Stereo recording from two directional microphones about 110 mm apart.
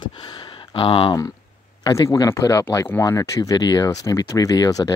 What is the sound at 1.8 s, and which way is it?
Speech, 30° left (ahead or behind).